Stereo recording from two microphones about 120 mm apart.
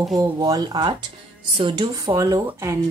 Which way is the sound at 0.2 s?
30° right (ahead or behind).